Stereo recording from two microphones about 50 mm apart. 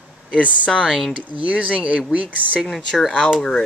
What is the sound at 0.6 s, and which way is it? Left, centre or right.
Speech, left.